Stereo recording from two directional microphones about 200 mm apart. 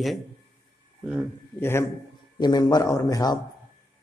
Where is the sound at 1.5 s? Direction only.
10° left (ahead or behind).